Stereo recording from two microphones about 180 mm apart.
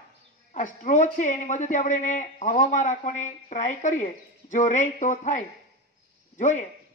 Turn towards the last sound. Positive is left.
turn(degrees=45)  # may be behind; listen again after turning